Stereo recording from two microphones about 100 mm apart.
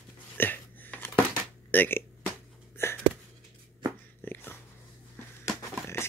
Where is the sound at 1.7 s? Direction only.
20° left (ahead or behind).